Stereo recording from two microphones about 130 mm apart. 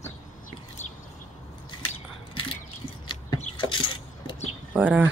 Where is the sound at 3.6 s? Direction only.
40° left (ahead or behind).